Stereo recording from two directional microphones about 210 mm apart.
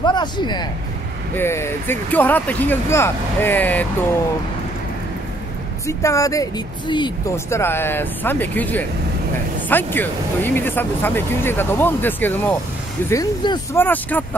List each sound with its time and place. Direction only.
0.0 s speech: 20° left (ahead or behind)
5.9 s speech: 15° left (ahead or behind)